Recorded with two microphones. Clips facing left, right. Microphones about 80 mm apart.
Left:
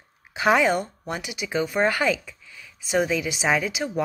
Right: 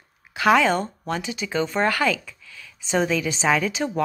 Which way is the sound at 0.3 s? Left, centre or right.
Left.